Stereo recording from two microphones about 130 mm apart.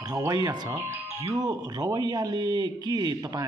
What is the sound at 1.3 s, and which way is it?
Speech, 30° right (ahead or behind).